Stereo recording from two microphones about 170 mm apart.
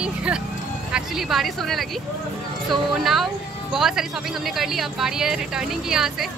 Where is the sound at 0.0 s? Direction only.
5° right (ahead or behind).